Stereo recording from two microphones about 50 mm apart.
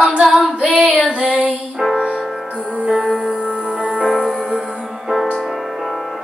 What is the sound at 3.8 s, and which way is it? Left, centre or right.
Music, right.